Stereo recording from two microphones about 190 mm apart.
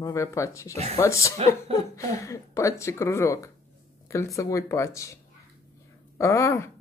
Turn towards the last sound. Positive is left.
turn(degrees=15)  # may be behind; listen again after turning